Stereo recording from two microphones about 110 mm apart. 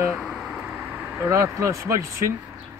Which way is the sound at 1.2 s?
25° right (ahead or behind).